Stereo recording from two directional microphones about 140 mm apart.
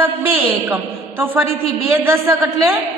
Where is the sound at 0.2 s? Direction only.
15° right (ahead or behind).